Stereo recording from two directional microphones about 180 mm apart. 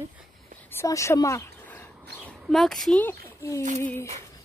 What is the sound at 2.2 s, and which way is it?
Speech, centre (ahead or behind).